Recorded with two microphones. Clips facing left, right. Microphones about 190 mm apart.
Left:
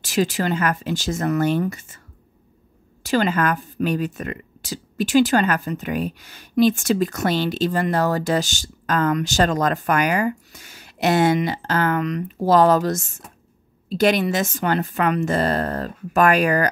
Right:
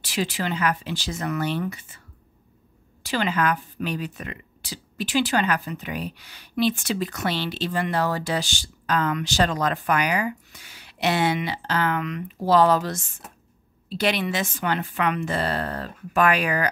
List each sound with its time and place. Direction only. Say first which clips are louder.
0.0 s speech: left 6 dB; 45° left (ahead or behind)
3.0 s speech: left 5 dB; 45° left (ahead or behind)